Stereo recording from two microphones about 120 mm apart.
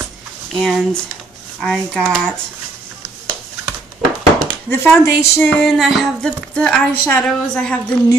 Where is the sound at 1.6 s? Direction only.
5° left (ahead or behind).